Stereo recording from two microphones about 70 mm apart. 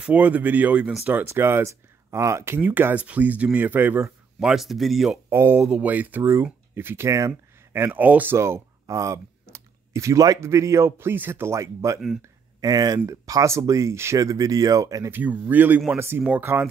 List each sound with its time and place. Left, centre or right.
0.0 s speech: right
1.2 s speech: right
2.6 s speech: right
4.4 s speech: centre
5.3 s speech: right
5.7 s speech: right
6.7 s speech: right
7.1 s speech: right
8.4 s a sound: right
10.4 s speech: right
11.4 s speech: right
12.5 s speech: right
14.1 s speech: right
15.0 s speech: right